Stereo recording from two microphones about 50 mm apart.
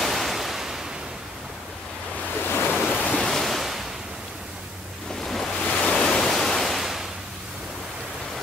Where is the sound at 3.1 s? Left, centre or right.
Centre.